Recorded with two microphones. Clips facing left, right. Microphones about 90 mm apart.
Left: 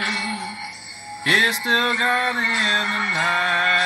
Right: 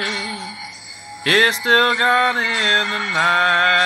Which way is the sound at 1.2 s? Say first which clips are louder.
Right 4 dB; 65° right (ahead or behind).